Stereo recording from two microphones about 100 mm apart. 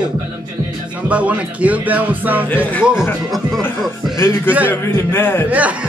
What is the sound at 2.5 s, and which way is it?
Speech, 20° left (ahead or behind).